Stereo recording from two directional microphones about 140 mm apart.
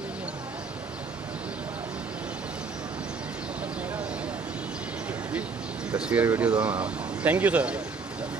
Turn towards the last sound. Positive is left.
turn(degrees=-10)  # may be behind; listen again after turning